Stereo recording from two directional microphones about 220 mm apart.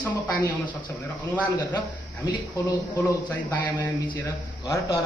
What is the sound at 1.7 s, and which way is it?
A man's voice, 20° left (ahead or behind).